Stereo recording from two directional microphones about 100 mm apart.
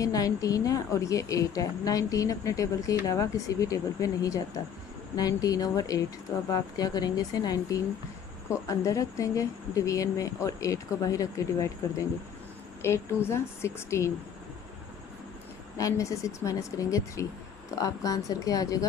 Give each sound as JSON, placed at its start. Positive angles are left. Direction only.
{"t": 0.0, "sound": "a woman's voice", "side_deg": 35}
{"t": 12.8, "sound": "a woman's voice", "side_deg": 25}
{"t": 15.8, "sound": "a woman's voice", "side_deg": 30}